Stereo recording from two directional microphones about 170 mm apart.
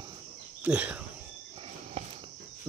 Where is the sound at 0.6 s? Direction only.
10° right (ahead or behind).